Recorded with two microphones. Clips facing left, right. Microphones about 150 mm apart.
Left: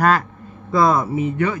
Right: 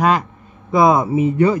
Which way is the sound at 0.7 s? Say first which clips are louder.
Right 3 dB; 20° right (ahead or behind).